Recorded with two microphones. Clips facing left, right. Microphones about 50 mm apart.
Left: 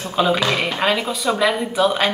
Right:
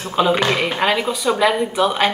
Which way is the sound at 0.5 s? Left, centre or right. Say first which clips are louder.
Right 1 dB; centre.